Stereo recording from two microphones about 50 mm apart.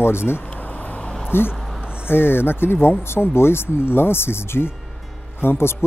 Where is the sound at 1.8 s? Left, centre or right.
Right.